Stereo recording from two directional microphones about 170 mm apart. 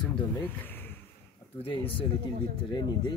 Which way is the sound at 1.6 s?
30° left (ahead or behind).